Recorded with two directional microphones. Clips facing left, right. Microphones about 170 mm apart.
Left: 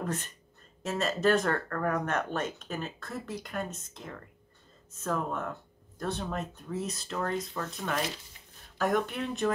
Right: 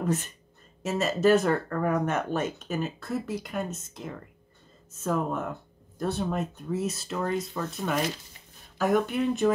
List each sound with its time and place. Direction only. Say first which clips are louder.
0.8 s speech: right 4 dB; 5° right (ahead or behind)